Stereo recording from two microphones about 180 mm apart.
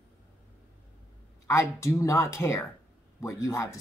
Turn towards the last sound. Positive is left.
turn(degrees=15)  # may be behind; listen again after turning